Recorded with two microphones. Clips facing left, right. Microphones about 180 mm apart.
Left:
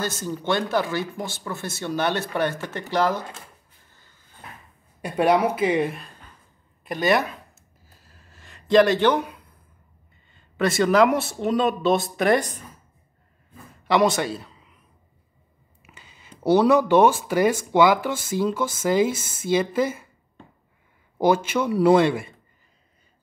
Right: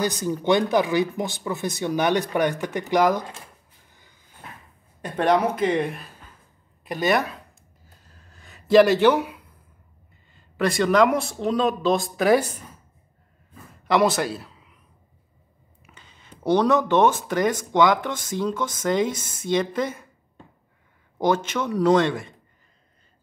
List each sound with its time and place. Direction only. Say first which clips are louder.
0.0 s speech: right 4 dB; 15° right (ahead or behind)
3.9 s a sound: right 2 dB; 15° right (ahead or behind)
5.0 s speech: left 1 dB; 10° left (ahead or behind)
8.0 s a sound: even; 5° left (ahead or behind)
10.3 s speech: left 1 dB; centre (ahead or behind)
13.8 s a man's voice: even; centre (ahead or behind)
15.8 s speech: left 1 dB; 5° left (ahead or behind)
21.2 s speech: left 2 dB; 10° left (ahead or behind)